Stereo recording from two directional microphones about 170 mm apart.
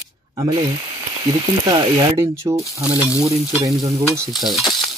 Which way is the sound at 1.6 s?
25° right (ahead or behind).